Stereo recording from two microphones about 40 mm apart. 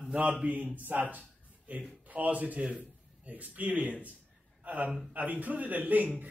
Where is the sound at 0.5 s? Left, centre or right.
Right.